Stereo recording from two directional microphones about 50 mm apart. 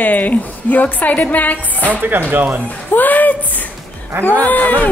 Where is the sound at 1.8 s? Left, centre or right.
Right.